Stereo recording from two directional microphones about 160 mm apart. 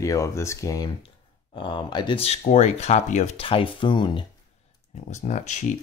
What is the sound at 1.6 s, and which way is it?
Speech, 30° left (ahead or behind).